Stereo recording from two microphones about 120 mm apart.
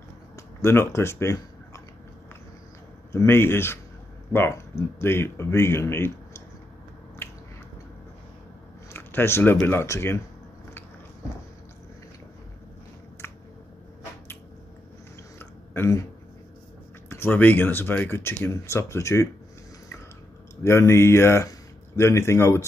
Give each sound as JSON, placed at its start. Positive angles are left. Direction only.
{"t": 0.4, "sound": "speech", "side_deg": 20}
{"t": 3.1, "sound": "speech", "side_deg": 20}
{"t": 8.9, "sound": "speech", "side_deg": 20}
{"t": 15.3, "sound": "chewing", "side_deg": 20}
{"t": 17.1, "sound": "speech", "side_deg": 20}
{"t": 20.6, "sound": "speech", "side_deg": 20}